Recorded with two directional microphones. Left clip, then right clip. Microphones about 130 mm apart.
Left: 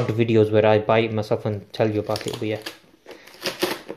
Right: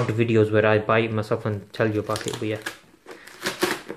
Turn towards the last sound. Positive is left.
turn(degrees=-5)  # may be behind; listen again after turning